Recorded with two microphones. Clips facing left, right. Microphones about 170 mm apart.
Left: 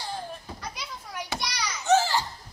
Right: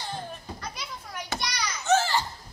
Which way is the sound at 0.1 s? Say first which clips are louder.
Even; 10° left (ahead or behind).